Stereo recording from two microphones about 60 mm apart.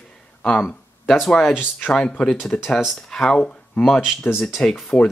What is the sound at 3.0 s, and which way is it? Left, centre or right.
Speech, centre.